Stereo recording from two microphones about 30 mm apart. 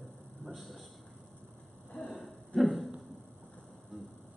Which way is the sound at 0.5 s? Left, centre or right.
Centre.